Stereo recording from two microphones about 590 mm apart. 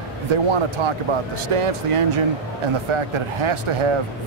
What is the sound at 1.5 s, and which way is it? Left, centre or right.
Speech, right.